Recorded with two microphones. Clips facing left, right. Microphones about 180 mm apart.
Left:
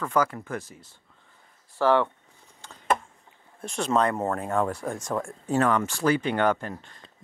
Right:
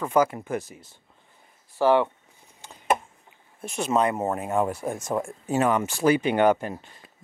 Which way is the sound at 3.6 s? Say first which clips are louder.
Right 1 dB; 5° right (ahead or behind).